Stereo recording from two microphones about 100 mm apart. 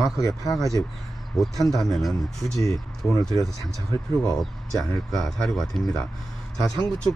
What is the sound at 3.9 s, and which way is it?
Speech, 45° right (ahead or behind).